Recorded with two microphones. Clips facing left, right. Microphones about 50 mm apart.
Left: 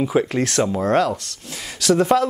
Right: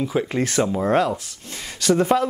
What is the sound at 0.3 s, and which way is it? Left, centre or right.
Speech, centre.